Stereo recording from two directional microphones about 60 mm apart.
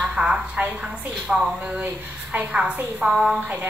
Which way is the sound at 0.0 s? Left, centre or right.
Centre.